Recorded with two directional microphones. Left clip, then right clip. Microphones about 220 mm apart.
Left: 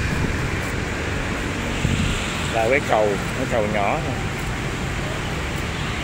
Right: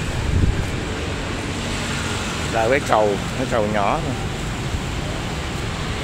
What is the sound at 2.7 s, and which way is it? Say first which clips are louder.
Speech: right 2 dB; 20° right (ahead or behind).